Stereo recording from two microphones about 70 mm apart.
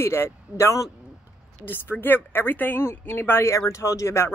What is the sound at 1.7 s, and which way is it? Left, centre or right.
Speech, left.